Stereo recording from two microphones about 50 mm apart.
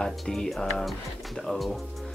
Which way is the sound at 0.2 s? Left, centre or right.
Centre.